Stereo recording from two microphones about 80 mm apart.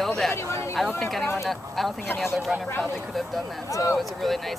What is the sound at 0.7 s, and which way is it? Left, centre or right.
Speech, centre.